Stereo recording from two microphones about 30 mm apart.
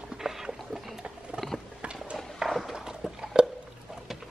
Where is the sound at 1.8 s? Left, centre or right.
Right.